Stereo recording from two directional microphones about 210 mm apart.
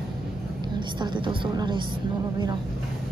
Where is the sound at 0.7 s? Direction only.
20° right (ahead or behind).